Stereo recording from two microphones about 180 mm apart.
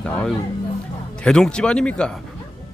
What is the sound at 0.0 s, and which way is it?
A man's voice, 5° left (ahead or behind).